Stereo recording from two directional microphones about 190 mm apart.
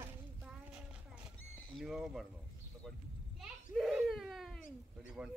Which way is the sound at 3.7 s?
Centre (ahead or behind).